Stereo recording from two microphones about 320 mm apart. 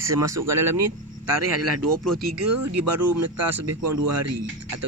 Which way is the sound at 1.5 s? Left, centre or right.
Right.